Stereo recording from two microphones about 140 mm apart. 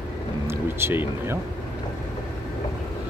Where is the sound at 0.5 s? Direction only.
15° right (ahead or behind).